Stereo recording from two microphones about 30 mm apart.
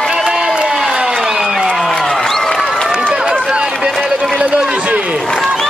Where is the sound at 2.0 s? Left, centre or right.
Left.